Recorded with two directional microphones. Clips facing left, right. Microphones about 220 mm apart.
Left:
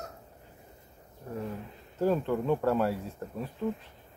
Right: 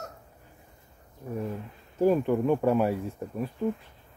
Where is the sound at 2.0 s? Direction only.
15° right (ahead or behind).